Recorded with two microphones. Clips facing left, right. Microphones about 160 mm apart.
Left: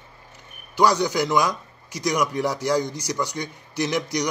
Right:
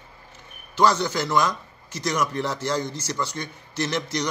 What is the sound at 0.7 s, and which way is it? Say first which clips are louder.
A man's voice: left 1 dB; 15° left (ahead or behind).